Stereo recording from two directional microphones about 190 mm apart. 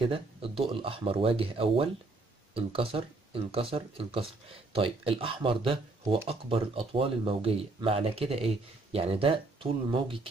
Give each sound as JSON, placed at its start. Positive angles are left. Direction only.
{"t": 0.0, "sound": "speech", "side_deg": -30}